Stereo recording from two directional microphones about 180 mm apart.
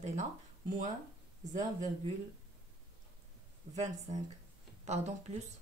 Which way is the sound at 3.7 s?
40° right (ahead or behind).